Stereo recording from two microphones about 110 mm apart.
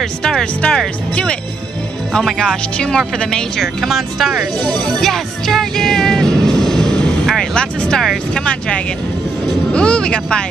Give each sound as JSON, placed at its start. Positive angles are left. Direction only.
{"t": 0.0, "sound": "speech", "side_deg": 5}
{"t": 4.8, "sound": "music", "side_deg": 5}
{"t": 9.7, "sound": "speech", "side_deg": 10}